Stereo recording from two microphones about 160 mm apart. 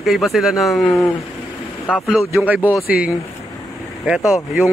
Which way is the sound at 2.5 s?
10° right (ahead or behind).